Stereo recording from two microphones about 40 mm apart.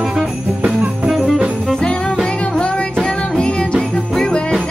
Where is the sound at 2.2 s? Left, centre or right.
Left.